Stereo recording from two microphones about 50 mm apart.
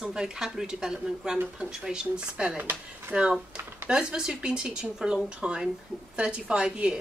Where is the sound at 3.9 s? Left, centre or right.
Centre.